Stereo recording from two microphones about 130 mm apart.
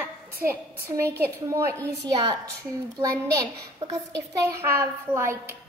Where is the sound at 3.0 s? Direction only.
25° right (ahead or behind).